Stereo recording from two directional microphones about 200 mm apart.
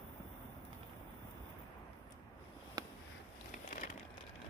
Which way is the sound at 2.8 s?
20° right (ahead or behind).